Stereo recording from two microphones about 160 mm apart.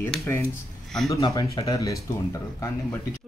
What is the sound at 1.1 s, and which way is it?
Speech, 20° left (ahead or behind).